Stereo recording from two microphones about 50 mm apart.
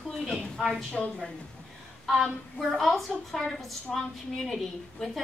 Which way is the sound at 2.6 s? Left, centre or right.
Centre.